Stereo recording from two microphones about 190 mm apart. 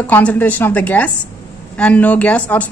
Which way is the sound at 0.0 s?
5° left (ahead or behind).